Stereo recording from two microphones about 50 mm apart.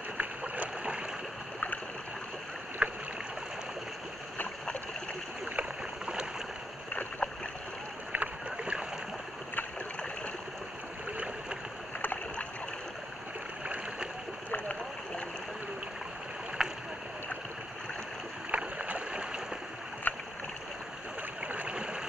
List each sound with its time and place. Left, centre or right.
0.2 s boat: right
2.8 s boat: right
5.6 s rowboat: centre
6.9 s boat: left
8.1 s boat: right
14.5 s a sound: left
16.6 s rowboat: centre
18.5 s boat: right
20.1 s rowboat: left
21.4 s a sound: right